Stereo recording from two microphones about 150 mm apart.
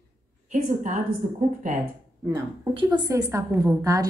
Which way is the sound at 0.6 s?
55° right (ahead or behind).